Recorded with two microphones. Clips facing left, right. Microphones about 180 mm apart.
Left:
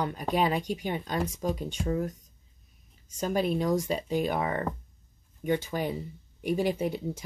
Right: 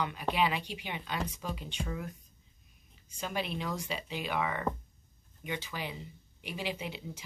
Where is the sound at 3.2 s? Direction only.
40° left (ahead or behind).